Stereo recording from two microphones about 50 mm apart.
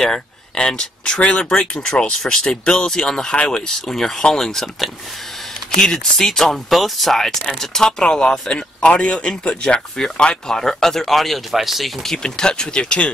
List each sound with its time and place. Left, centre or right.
0.0 s speech: centre
12.2 s speech: centre